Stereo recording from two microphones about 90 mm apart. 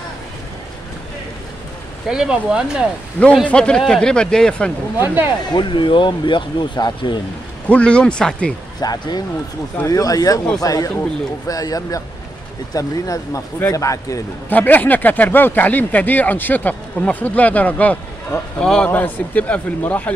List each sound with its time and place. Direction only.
2.0 s speech: 10° right (ahead or behind)
3.4 s a man's voice: 10° left (ahead or behind)
5.0 s speech: 25° right (ahead or behind)
5.5 s speech: 60° left (ahead or behind)
7.6 s a man's voice: 15° left (ahead or behind)
8.8 s speech: 50° left (ahead or behind)
14.5 s a man's voice: 20° left (ahead or behind)